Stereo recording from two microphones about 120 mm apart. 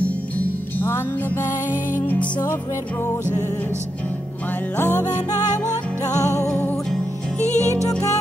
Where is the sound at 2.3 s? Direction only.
30° left (ahead or behind).